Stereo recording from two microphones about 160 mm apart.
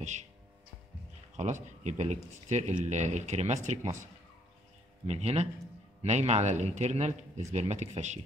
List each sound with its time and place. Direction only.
0.0 s speech: 45° right (ahead or behind)
1.3 s a man's voice: 45° right (ahead or behind)